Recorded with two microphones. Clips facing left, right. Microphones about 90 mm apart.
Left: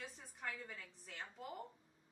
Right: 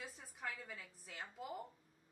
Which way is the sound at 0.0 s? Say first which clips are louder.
Right 1 dB; 5° right (ahead or behind).